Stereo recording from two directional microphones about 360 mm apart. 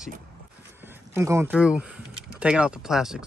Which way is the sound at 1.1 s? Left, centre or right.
Centre.